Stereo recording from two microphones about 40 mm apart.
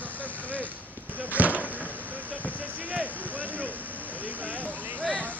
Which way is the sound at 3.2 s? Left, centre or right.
Left.